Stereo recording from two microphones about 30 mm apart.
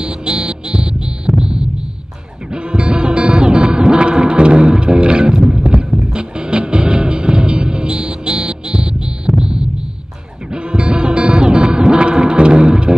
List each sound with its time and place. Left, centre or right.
0.0 s music: right
1.4 s hum: right
2.5 s music: right
5.7 s horse: right
6.1 s music: right